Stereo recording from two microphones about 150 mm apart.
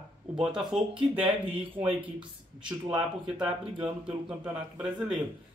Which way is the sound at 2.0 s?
10° right (ahead or behind).